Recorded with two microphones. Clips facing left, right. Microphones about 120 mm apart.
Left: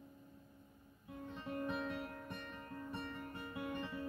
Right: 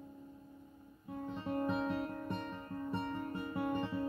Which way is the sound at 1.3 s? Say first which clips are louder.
Right 6 dB; 30° right (ahead or behind).